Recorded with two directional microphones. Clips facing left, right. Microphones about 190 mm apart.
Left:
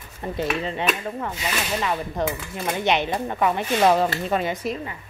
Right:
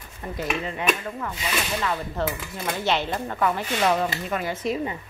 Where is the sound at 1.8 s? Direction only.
15° left (ahead or behind).